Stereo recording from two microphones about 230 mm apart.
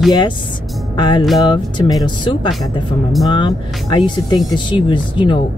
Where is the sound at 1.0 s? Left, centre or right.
Centre.